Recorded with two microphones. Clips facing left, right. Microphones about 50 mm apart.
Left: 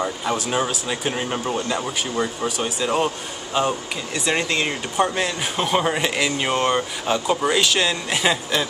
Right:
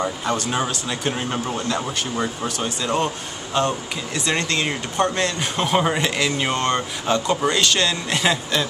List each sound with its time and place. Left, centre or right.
0.0 s speech: centre